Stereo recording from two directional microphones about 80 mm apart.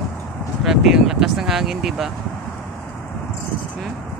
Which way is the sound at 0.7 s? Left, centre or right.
Centre.